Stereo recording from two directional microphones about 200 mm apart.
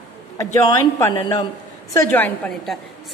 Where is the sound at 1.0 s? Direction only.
20° left (ahead or behind).